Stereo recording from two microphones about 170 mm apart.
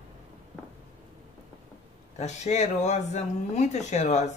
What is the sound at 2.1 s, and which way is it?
Speech, 40° left (ahead or behind).